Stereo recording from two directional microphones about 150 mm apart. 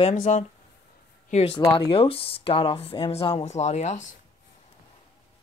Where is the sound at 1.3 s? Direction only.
40° left (ahead or behind).